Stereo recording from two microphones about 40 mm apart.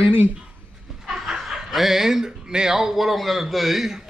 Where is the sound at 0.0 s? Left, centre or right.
Right.